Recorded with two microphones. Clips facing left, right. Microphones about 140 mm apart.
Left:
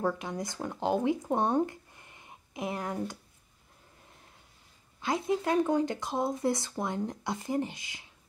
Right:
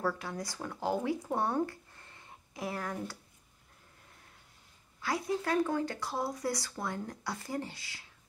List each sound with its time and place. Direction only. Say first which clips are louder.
0.0 s speech: left 3 dB; 20° left (ahead or behind)
5.0 s speech: left 4 dB; 20° left (ahead or behind)